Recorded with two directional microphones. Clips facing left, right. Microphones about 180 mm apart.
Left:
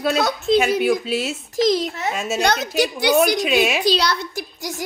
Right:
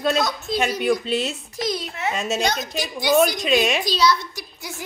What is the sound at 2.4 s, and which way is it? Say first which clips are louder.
Speech: left 5 dB; 70° left (ahead or behind).